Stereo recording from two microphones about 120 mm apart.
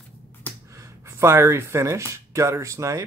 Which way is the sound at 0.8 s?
25° right (ahead or behind).